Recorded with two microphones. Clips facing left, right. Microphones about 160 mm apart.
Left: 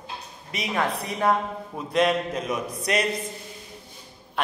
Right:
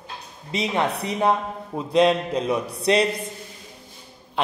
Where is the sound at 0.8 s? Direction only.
70° right (ahead or behind).